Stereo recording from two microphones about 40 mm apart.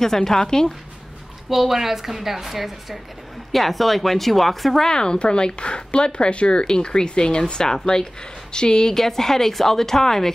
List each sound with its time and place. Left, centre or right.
0.0 s a woman's voice: centre
1.5 s a woman's voice: centre
4.8 s speech: centre
8.9 s a woman's voice: centre